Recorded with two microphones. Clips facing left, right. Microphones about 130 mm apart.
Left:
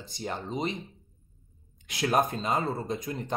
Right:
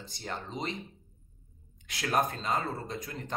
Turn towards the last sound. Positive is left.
turn(degrees=15)  # may be behind; listen again after turning